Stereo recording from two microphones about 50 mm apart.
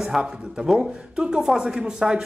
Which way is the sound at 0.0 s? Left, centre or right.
Centre.